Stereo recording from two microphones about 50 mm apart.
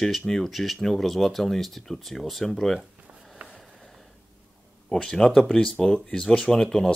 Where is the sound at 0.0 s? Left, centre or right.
Centre.